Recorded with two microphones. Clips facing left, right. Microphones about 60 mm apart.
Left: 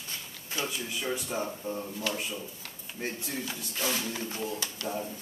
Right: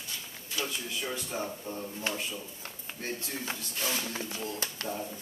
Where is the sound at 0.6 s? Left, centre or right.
Left.